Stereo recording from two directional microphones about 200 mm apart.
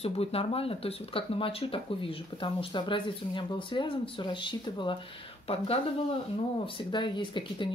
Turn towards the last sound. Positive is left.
turn(degrees=25)  # may be behind; listen again after turning